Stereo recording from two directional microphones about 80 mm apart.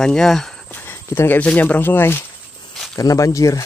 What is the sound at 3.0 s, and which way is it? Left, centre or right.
Speech, left.